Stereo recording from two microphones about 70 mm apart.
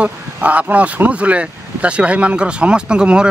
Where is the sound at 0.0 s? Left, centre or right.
Right.